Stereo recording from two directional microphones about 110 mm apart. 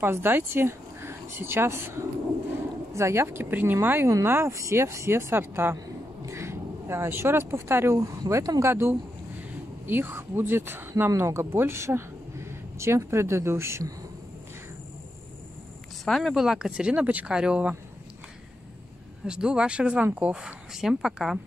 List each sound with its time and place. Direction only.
0.0 s speech: 20° right (ahead or behind)
16.1 s speech: centre (ahead or behind)
19.2 s speech: 10° right (ahead or behind)